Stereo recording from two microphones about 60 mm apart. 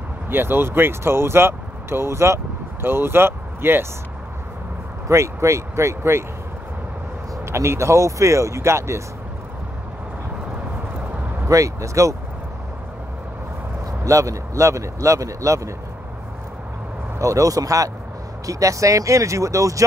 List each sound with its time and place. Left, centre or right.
0.3 s speech: right
5.0 s speech: right
7.5 s a man's voice: right
11.4 s speech: right
14.0 s a man's voice: right
17.2 s a man's voice: right